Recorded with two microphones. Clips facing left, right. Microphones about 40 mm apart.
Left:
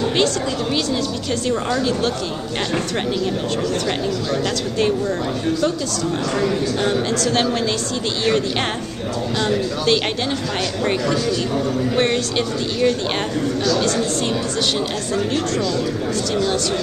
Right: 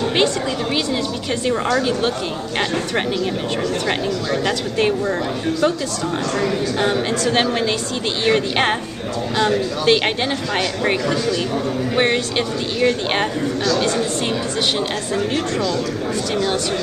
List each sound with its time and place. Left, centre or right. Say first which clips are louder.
4.3 s speech: right 1 dB; centre
6.4 s speech: right 1 dB; centre